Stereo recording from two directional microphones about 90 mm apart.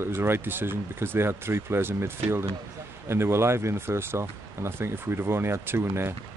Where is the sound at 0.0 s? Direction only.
25° right (ahead or behind).